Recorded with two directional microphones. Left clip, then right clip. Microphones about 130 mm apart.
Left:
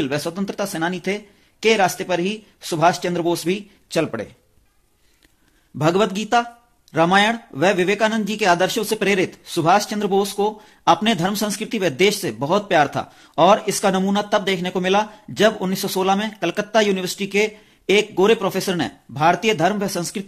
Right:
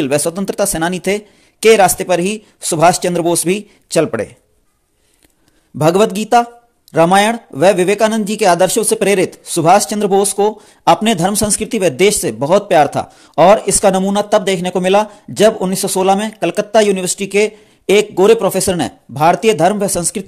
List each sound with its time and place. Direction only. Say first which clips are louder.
0.0 s speech: right 8 dB; 60° right (ahead or behind)
5.8 s speech: right 7 dB; 50° right (ahead or behind)